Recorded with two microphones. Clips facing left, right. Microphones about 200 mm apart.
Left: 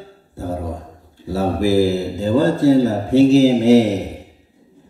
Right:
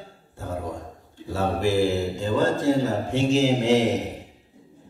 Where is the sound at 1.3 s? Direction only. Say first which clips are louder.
Left 6 dB; 35° left (ahead or behind).